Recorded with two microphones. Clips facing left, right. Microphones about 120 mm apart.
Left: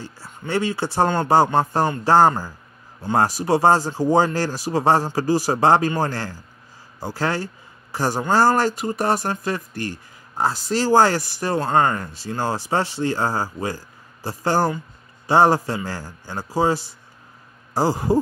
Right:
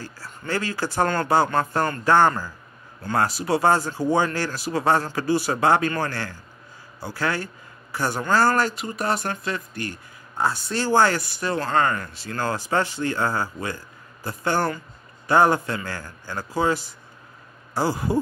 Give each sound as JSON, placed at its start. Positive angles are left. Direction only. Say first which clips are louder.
{"t": 0.5, "sound": "a man's voice", "louder": "left 4 dB", "side_deg": 25}
{"t": 8.2, "sound": "speech", "louder": "left 3 dB", "side_deg": 20}
{"t": 8.6, "sound": "speech", "louder": "left 5 dB", "side_deg": 35}
{"t": 11.6, "sound": "speech", "louder": "left 3 dB", "side_deg": 25}